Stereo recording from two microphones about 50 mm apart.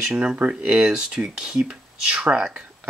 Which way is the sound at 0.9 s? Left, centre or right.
Centre.